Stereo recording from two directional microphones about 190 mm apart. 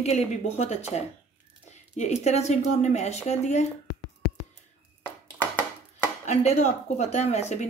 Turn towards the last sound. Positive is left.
turn(degrees=35)  # may be behind; listen again after turning